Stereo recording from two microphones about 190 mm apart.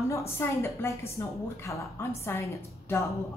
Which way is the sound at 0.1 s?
15° left (ahead or behind).